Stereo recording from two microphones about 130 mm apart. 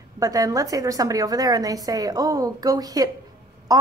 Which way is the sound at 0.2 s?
25° right (ahead or behind).